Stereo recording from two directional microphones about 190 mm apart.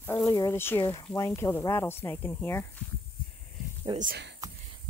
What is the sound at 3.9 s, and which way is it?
Speech, 45° right (ahead or behind).